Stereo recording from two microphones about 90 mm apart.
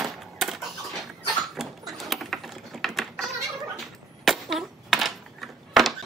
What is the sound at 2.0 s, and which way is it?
Typing, centre (ahead or behind).